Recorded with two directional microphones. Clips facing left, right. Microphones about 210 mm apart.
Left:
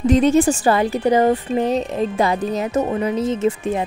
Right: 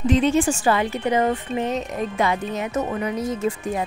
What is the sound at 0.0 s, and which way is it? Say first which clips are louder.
A woman's voice: left 4 dB; 40° left (ahead or behind).